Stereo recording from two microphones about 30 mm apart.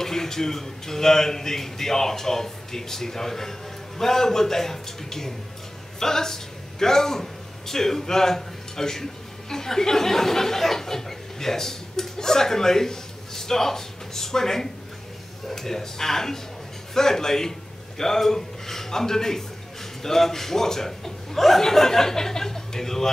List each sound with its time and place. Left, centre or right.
0.0 s a man's voice: centre